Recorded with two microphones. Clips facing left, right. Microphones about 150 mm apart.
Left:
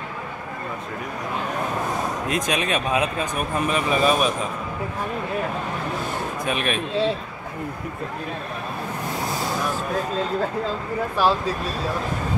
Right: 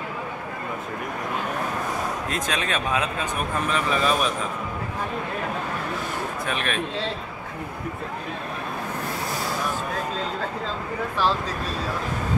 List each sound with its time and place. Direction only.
2.2 s speech: 15° left (ahead or behind)
6.4 s speech: 15° left (ahead or behind)
11.2 s speech: 10° left (ahead or behind)